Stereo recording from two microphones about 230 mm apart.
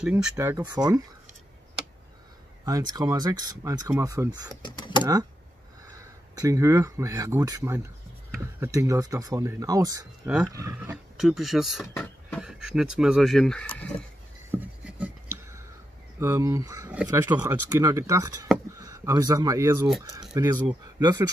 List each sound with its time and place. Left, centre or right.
0.0 s speech: centre
2.6 s speech: centre
4.6 s speech: centre
5.9 s speech: centre
11.1 s speech: centre
14.5 s writing: centre
16.2 s speech: centre